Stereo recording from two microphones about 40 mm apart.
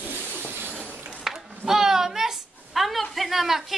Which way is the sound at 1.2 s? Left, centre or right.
Centre.